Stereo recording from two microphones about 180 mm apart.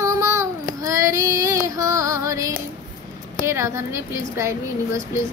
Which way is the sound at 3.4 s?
15° right (ahead or behind).